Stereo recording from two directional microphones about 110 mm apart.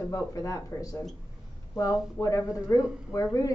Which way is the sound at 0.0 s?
30° left (ahead or behind).